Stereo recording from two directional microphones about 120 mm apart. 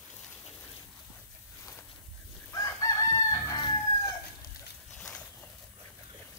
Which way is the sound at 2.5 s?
30° left (ahead or behind).